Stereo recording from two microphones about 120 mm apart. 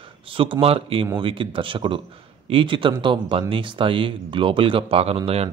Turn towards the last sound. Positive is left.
turn(degrees=-55)  # may be behind; listen again after turning